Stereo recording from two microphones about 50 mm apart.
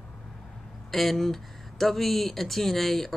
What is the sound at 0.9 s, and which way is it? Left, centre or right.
Speech, centre.